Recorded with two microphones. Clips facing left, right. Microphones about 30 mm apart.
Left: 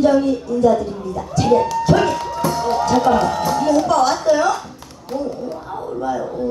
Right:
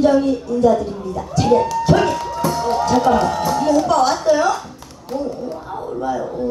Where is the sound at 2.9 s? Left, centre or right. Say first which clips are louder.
Even; centre.